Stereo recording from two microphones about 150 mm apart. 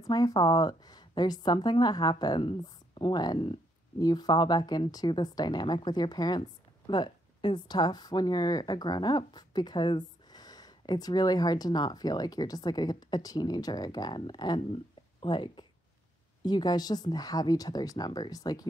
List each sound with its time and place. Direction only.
0.0 s speech: 25° left (ahead or behind)